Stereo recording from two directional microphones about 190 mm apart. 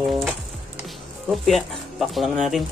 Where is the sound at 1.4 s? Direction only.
Centre (ahead or behind).